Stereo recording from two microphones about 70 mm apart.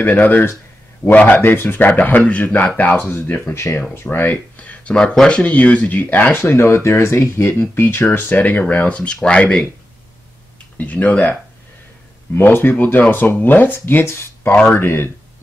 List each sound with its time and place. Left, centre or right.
0.0 s speech: left
10.8 s speech: left
12.4 s speech: left